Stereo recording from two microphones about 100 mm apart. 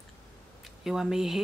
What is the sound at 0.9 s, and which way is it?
Speech, 5° right (ahead or behind).